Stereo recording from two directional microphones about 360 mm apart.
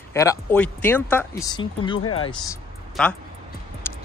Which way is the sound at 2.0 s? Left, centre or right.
Left.